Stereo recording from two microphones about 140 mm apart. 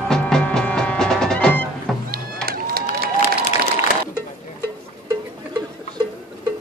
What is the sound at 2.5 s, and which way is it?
Run, 90° right.